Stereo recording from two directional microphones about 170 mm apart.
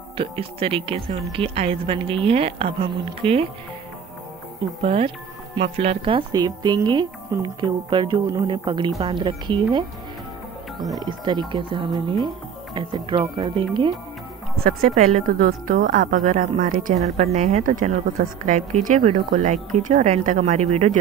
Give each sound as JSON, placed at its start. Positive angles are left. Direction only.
{"t": 0.2, "sound": "a woman's voice", "side_deg": -35}
{"t": 4.8, "sound": "a woman's voice", "side_deg": -35}
{"t": 11.0, "sound": "speech", "side_deg": -25}
{"t": 14.6, "sound": "a woman's voice", "side_deg": -60}
{"t": 17.2, "sound": "a woman's voice", "side_deg": -40}